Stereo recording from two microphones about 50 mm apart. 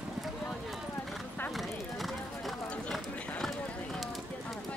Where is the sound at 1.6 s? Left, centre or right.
Centre.